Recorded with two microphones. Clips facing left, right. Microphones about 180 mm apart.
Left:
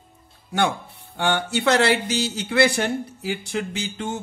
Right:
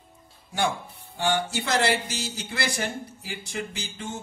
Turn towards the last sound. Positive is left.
turn(degrees=65)  # may be behind; listen again after turning